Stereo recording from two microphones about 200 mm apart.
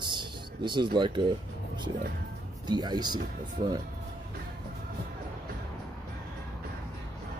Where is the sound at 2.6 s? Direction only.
20° right (ahead or behind).